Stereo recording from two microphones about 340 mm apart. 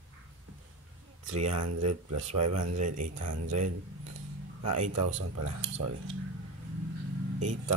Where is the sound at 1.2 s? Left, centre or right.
Right.